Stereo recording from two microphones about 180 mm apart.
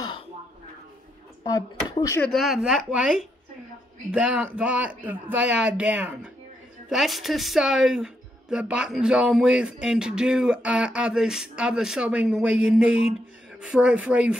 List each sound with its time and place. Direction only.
1.4 s speech: 20° left (ahead or behind)
2.2 s speech: centre (ahead or behind)